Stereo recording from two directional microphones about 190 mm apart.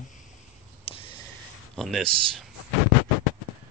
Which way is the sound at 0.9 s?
30° left (ahead or behind).